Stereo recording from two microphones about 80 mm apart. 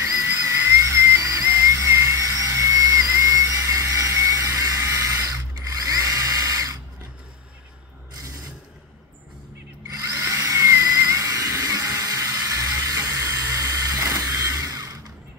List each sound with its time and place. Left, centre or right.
0.4 s music: right
5.7 s drill: right
10.3 s a sound: right